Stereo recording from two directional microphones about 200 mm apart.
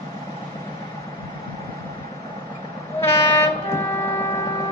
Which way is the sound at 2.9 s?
10° left (ahead or behind).